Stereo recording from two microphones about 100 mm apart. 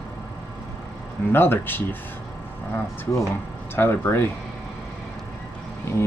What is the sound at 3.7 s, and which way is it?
Speech, 20° left (ahead or behind).